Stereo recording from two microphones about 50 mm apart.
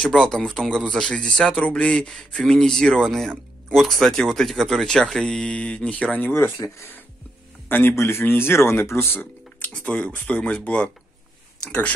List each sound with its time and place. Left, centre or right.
0.2 s speech: centre
6.2 s speech: left
6.5 s speech: left
7.6 s a man's voice: left
7.9 s speech: left
9.6 s speech: left